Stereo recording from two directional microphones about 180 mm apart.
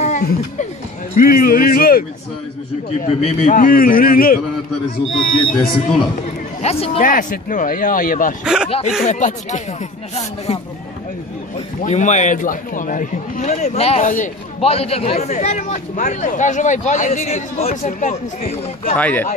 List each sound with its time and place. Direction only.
0.0 s speech: 40° left (ahead or behind)
1.1 s a man's voice: 50° left (ahead or behind)
3.1 s a man's voice: 35° left (ahead or behind); by 4.4 s 50° left (ahead or behind)
5.0 s speech: centre (ahead or behind)
6.6 s a man's voice: 35° left (ahead or behind)
7.0 s a man's voice: 50° left (ahead or behind)
11.8 s a man's voice: 40° left (ahead or behind)
14.6 s a man's voice: 35° left (ahead or behind)
18.9 s speech: 10° left (ahead or behind)